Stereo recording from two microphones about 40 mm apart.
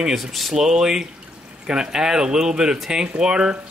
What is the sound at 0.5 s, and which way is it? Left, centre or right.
Speech, centre.